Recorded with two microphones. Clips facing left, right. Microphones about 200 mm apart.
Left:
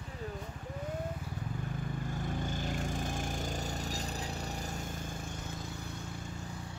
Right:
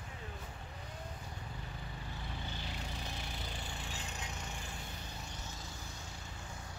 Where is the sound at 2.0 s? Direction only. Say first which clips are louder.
Left 9 dB; 45° left (ahead or behind).